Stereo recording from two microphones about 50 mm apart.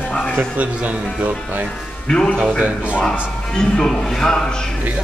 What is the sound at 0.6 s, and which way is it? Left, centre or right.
Speech, right.